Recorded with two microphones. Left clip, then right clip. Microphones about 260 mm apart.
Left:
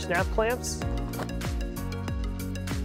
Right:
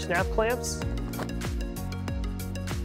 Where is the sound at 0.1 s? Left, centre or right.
Centre.